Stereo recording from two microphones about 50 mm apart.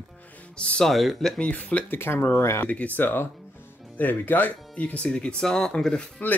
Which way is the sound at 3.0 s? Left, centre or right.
Left.